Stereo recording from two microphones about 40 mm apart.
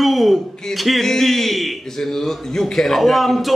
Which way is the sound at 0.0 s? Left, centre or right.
Centre.